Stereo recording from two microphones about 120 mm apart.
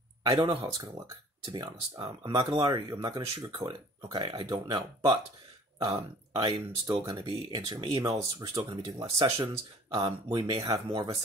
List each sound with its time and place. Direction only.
0.3 s speech: 45° right (ahead or behind)
6.3 s speech: 40° right (ahead or behind)